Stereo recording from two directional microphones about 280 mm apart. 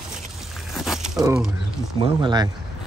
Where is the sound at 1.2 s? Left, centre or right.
Centre.